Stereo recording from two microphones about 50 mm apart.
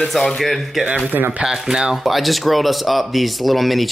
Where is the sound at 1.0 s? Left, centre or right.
Right.